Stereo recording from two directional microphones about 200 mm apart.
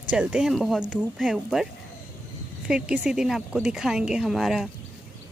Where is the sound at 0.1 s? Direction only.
5° right (ahead or behind).